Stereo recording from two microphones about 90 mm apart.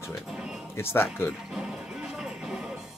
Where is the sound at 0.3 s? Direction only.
5° right (ahead or behind).